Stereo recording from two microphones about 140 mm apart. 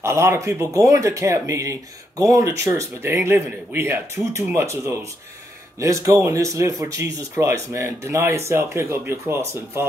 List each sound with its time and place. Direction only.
0.0 s speech: 20° right (ahead or behind)
5.8 s speech: 20° right (ahead or behind)